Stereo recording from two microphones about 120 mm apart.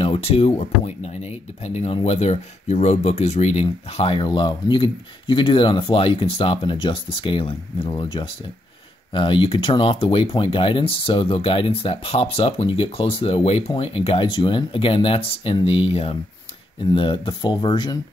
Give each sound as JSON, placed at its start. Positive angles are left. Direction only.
{"t": 0.0, "sound": "speech", "side_deg": 50}